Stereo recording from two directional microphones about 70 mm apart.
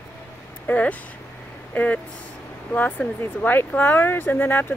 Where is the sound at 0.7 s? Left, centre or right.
Left.